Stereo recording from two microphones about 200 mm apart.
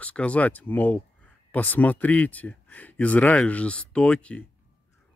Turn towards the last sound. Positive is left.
turn(degrees=5)  # may be behind; listen again after turning